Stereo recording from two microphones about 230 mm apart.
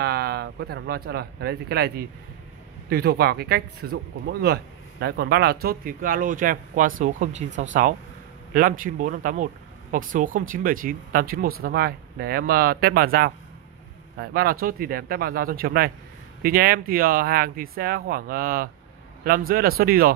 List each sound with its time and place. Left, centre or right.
0.0 s speech: right